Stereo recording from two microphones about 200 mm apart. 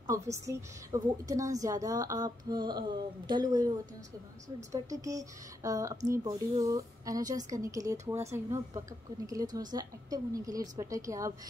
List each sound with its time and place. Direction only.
0.0 s a woman's voice: 15° right (ahead or behind)